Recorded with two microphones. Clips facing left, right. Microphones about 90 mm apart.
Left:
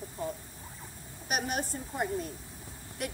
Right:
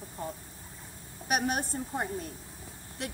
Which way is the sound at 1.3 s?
45° right (ahead or behind).